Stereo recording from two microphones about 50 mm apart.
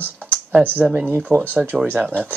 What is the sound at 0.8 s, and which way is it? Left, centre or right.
Speech, centre.